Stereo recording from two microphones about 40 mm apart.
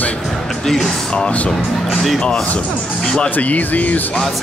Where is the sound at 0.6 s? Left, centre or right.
Centre.